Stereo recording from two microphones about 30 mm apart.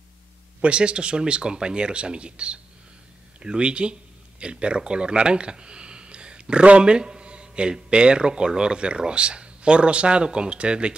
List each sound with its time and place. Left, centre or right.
0.7 s speech: right